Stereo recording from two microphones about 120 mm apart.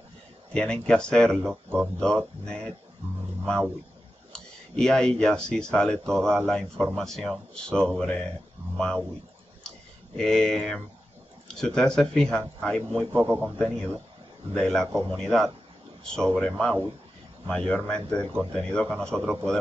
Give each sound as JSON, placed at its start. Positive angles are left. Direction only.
{"t": 0.5, "sound": "speech", "side_deg": 5}
{"t": 1.5, "sound": "speech", "side_deg": -5}
{"t": 2.0, "sound": "speech", "side_deg": 5}
{"t": 4.3, "sound": "speech", "side_deg": 5}
{"t": 10.1, "sound": "speech", "side_deg": 5}
{"t": 13.1, "sound": "a man's voice", "side_deg": -15}
{"t": 14.5, "sound": "speech", "side_deg": 5}